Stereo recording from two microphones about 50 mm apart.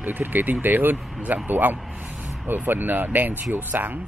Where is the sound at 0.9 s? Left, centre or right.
Centre.